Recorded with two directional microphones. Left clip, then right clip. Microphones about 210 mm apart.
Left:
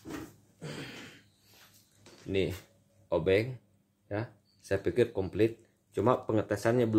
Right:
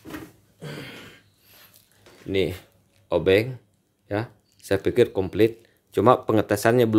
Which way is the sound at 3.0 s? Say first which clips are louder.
Right 8 dB; 35° right (ahead or behind).